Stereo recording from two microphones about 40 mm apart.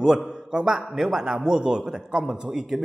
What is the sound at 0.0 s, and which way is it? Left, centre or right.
A man's voice, centre.